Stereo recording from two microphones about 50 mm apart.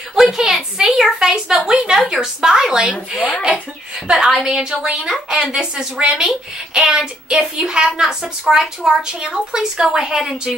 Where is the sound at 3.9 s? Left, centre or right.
Centre.